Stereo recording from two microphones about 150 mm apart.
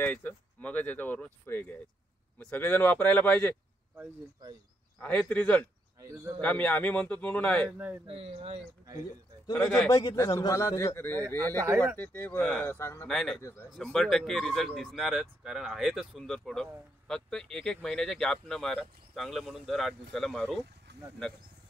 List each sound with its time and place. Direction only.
0.0 s speech: 15° left (ahead or behind)
5.0 s speech: 10° left (ahead or behind)
5.9 s speech: 20° right (ahead or behind)
6.4 s speech: 10° left (ahead or behind)
7.7 s speech: 10° right (ahead or behind)
8.1 s speech: 40° right (ahead or behind)
9.5 s a man's voice: 15° left (ahead or behind)
12.7 s a man's voice: 20° left (ahead or behind)
13.0 s speech: 5° left (ahead or behind)
13.4 s a man's voice: 20° left (ahead or behind)
13.7 s speech: 5° left (ahead or behind)